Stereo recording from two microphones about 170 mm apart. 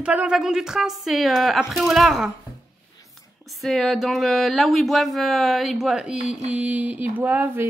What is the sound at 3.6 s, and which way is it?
Speech, centre (ahead or behind).